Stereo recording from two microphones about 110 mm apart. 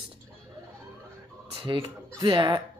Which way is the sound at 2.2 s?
45° right (ahead or behind).